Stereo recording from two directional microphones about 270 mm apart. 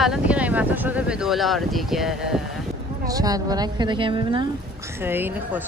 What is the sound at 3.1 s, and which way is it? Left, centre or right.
A woman's voice, centre.